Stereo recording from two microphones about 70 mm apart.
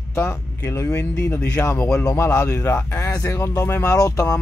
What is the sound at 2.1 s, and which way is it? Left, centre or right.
Speech, left.